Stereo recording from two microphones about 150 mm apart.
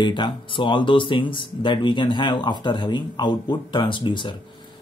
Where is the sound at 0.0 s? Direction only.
30° left (ahead or behind).